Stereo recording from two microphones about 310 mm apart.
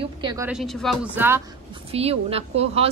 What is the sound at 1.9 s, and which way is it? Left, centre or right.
Speech, centre.